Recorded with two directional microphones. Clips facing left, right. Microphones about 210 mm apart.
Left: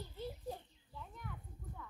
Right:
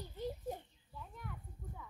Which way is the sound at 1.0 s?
5° right (ahead or behind).